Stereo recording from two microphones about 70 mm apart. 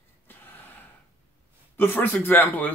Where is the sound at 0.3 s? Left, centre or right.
Left.